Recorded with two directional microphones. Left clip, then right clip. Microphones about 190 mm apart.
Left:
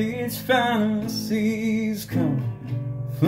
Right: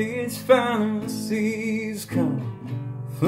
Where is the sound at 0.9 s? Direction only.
15° right (ahead or behind).